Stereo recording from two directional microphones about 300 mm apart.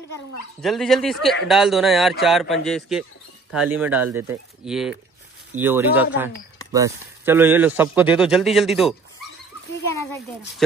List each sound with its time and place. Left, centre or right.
0.6 s speech: centre